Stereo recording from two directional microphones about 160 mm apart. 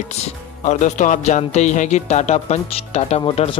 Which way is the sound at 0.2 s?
50° left (ahead or behind).